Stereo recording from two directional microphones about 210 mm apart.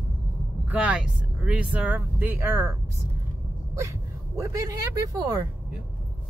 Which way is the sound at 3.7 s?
15° right (ahead or behind).